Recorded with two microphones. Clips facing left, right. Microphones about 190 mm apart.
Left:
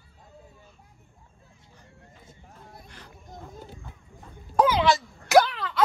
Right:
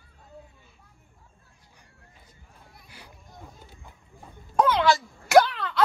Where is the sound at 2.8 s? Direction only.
10° right (ahead or behind).